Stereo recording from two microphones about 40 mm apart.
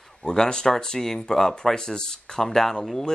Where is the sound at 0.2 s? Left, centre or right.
Centre.